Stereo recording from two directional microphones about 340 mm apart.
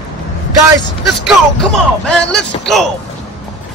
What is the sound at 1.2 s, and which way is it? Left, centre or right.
Speech, centre.